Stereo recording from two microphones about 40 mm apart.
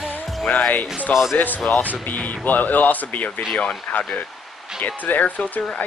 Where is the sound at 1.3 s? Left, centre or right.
Left.